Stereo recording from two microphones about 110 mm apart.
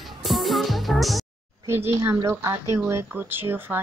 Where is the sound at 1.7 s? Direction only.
25° right (ahead or behind).